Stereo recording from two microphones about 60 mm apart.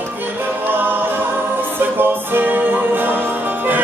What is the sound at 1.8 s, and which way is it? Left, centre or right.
Music, right.